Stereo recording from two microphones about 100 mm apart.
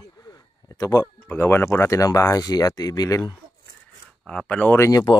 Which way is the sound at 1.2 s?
25° left (ahead or behind).